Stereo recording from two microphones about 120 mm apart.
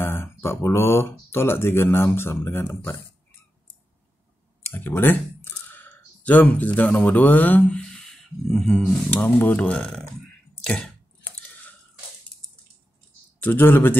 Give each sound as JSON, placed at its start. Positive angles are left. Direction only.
{"t": 0.0, "sound": "speech", "side_deg": 20}
{"t": 4.6, "sound": "speech", "side_deg": 15}
{"t": 10.6, "sound": "squish", "side_deg": 5}
{"t": 13.4, "sound": "a man's voice", "side_deg": 15}